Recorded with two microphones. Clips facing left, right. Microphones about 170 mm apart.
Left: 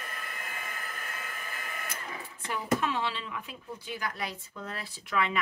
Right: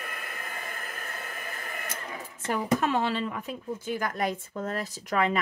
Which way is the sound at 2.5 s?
45° right (ahead or behind).